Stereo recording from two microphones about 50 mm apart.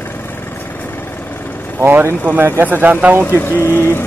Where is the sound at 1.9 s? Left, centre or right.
Right.